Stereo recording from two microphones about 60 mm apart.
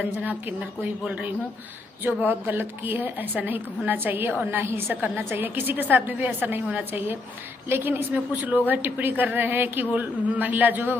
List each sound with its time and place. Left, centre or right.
0.0 s a woman's voice: right
2.2 s a woman's voice: right
8.1 s a woman's voice: right